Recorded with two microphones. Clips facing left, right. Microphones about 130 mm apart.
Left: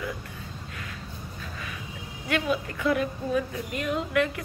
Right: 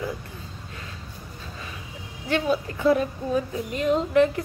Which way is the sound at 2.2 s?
30° right (ahead or behind).